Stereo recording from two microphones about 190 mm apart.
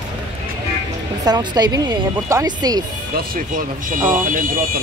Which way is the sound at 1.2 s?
20° right (ahead or behind).